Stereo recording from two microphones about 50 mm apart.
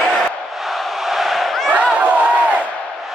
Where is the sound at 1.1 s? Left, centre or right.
Centre.